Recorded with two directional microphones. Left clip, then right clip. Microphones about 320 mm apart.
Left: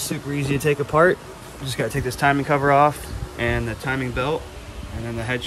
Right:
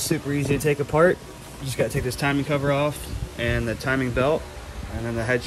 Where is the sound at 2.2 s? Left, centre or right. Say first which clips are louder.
Left 6 dB; centre.